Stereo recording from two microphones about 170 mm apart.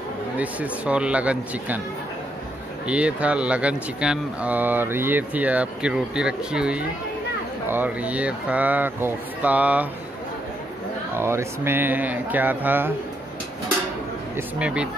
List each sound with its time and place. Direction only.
0.4 s speech: 10° right (ahead or behind)
2.9 s speech: 5° right (ahead or behind)
11.1 s speech: 15° right (ahead or behind)
14.3 s speech: 5° right (ahead or behind)